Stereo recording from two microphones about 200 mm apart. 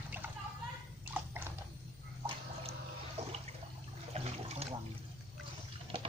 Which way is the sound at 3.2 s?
35° right (ahead or behind).